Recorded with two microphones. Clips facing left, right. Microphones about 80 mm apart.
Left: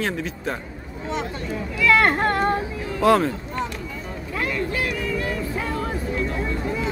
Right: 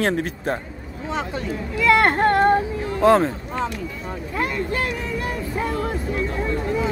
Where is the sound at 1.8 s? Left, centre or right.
Right.